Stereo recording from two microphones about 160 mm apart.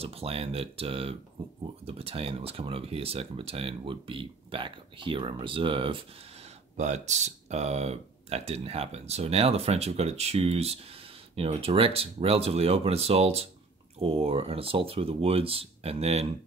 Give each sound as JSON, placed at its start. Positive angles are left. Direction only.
{"t": 0.0, "sound": "speech", "side_deg": -40}
{"t": 6.8, "sound": "speech", "side_deg": -45}